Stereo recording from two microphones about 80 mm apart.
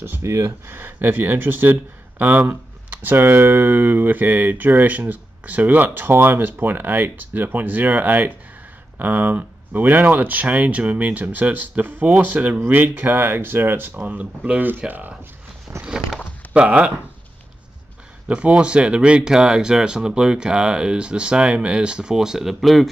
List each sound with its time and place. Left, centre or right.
0.0 s speech: right
13.9 s speech: centre
15.8 s a sound: centre
16.5 s speech: centre
18.3 s speech: centre